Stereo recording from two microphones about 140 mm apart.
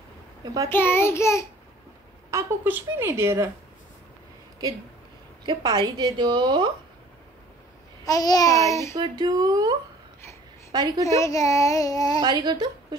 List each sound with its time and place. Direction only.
0.7 s a child's voice: 15° left (ahead or behind)
2.3 s a woman's voice: 15° right (ahead or behind)
5.4 s a woman's voice: 30° right (ahead or behind)
8.0 s speech: 25° left (ahead or behind)
8.9 s speech: 30° right (ahead or behind)
11.1 s speech: 25° left (ahead or behind)
12.2 s a woman's voice: 30° right (ahead or behind)